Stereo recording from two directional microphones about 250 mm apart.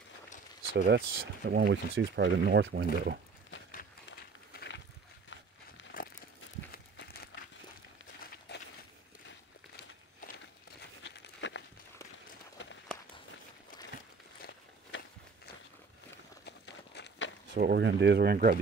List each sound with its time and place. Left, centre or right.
0.7 s speech: right
5.9 s a sound: left
8.5 s walk: left
11.1 s a sound: left
12.6 s run: left
14.4 s walk: left
16.4 s walk: left
17.6 s speech: right